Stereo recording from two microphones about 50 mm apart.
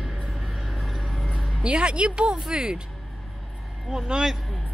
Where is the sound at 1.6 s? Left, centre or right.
Right.